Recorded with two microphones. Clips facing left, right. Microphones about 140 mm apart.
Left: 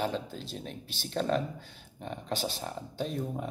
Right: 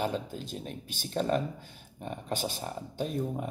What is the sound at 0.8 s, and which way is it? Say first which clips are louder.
Speech: right 1 dB; 45° right (ahead or behind).